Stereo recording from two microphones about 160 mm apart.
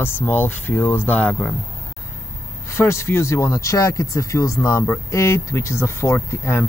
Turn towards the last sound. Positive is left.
turn(degrees=15)  # may be behind; listen again after turning